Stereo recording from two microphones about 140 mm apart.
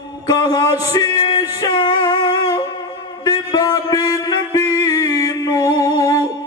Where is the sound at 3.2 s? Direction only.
30° left (ahead or behind).